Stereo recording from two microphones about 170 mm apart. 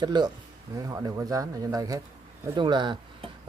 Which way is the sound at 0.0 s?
25° right (ahead or behind).